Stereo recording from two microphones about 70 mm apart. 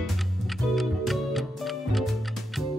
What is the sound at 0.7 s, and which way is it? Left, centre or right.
Music, centre.